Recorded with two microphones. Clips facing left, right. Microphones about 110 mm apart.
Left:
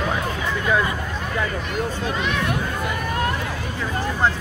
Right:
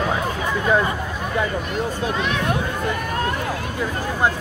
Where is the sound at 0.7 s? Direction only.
30° right (ahead or behind).